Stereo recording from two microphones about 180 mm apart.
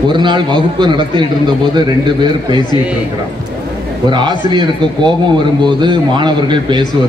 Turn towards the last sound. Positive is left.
turn(degrees=-25)  # may be behind; listen again after turning